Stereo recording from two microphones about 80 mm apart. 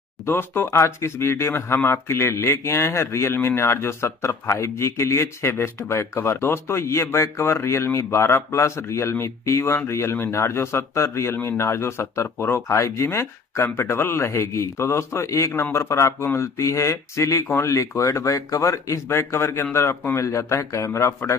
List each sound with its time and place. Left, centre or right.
0.2 s a man's voice: left